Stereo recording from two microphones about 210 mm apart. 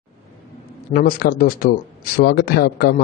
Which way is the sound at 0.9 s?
45° left (ahead or behind).